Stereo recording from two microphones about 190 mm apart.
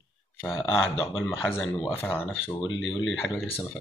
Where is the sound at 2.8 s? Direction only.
80° left.